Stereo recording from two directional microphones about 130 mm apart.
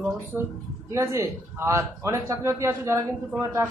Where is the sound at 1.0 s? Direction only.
25° right (ahead or behind).